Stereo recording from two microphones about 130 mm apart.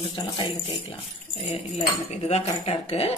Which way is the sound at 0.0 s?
40° left (ahead or behind).